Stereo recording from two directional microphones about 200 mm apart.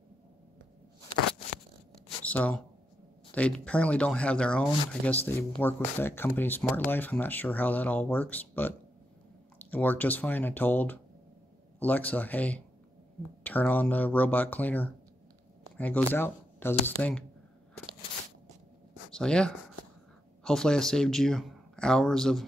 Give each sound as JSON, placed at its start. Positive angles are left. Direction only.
{"t": 2.2, "sound": "speech", "side_deg": 5}
{"t": 19.1, "sound": "speech", "side_deg": 5}